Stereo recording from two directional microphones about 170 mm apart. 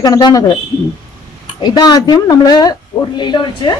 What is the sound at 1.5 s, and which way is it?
A woman's voice, 25° left (ahead or behind).